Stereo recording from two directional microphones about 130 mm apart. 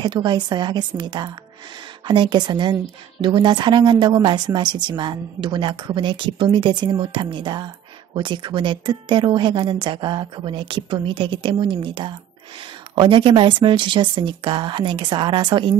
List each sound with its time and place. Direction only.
0.0 s a woman's voice: 35° right (ahead or behind)